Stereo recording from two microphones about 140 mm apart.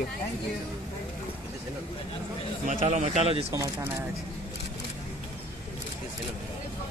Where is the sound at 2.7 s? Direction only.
60° right (ahead or behind).